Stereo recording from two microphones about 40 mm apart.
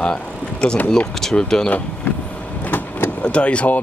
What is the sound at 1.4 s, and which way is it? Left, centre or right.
Speech, centre.